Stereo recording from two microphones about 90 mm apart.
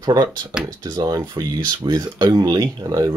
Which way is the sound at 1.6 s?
60° right (ahead or behind).